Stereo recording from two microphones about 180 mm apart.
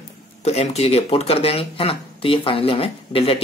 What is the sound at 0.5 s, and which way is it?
Speech, 35° left (ahead or behind).